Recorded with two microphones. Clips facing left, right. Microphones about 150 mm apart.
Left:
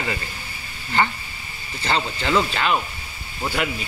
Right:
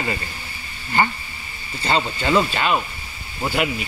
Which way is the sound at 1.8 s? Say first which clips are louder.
Right 2 dB; 10° right (ahead or behind).